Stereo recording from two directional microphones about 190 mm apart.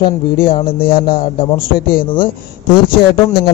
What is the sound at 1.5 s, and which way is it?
Speech, 50° left (ahead or behind).